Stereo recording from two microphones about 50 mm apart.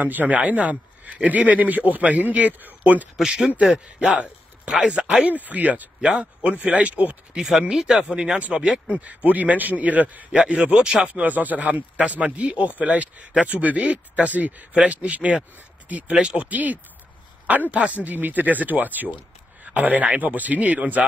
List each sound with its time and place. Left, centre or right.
0.0 s a man's voice: right
3.2 s speech: centre
3.4 s speech: right
4.6 s speech: centre
5.3 s a man's voice: right
5.9 s speech: centre
7.3 s a man's voice: centre
11.1 s a man's voice: right
16.2 s speech: right
16.4 s a man's voice: right